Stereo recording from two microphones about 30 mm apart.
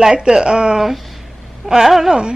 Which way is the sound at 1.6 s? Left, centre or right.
Centre.